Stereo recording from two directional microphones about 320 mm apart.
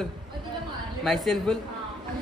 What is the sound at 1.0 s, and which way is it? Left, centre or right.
Speech, centre.